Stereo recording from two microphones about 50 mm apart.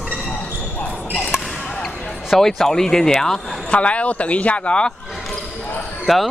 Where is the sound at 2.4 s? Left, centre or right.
Centre.